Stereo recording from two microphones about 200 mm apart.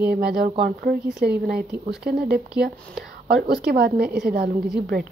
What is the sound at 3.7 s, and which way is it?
Speech, 50° right (ahead or behind).